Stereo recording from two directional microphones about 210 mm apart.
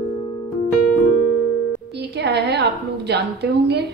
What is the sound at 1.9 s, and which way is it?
A woman's voice, 55° right (ahead or behind).